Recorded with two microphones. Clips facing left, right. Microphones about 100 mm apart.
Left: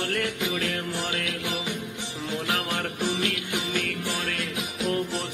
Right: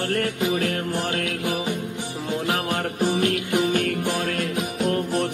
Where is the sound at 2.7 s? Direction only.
45° right (ahead or behind).